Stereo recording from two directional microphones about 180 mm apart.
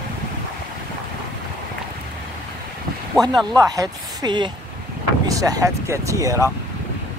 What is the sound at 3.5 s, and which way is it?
Speech, 20° right (ahead or behind).